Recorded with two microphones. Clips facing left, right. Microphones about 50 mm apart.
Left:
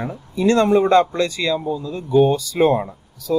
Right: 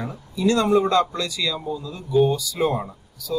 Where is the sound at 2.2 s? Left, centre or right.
Left.